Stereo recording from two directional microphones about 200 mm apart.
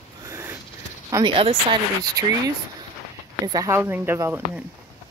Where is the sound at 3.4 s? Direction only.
15° right (ahead or behind).